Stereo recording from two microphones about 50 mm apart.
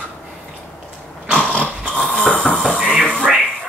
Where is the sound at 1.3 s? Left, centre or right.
Left.